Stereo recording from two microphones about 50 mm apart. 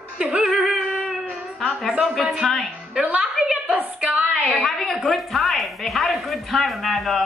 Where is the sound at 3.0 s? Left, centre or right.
Centre.